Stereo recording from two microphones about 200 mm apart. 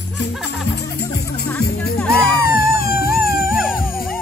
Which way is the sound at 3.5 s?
5° right (ahead or behind).